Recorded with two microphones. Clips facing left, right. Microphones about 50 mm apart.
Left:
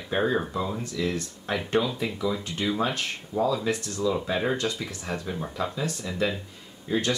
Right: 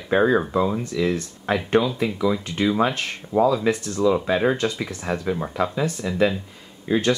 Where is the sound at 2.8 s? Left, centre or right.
Right.